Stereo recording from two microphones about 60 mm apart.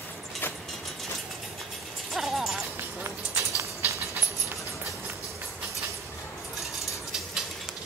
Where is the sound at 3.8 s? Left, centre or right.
Right.